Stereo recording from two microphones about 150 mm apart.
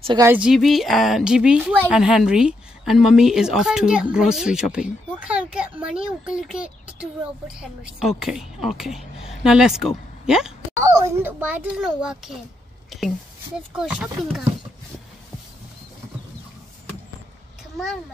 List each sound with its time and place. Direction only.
0.2 s a woman's voice: 10° right (ahead or behind)
11.0 s a child's voice: 15° right (ahead or behind)
13.7 s a woman's voice: 5° right (ahead or behind)